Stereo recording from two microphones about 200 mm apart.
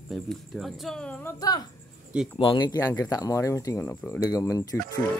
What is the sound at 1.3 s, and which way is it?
Speech, 20° left (ahead or behind).